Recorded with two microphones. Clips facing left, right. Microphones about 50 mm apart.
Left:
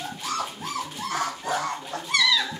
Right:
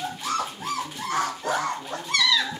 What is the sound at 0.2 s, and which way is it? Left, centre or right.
Bird, centre.